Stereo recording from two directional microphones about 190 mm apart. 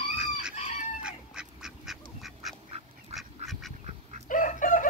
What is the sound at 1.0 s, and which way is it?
Duck, 5° right (ahead or behind).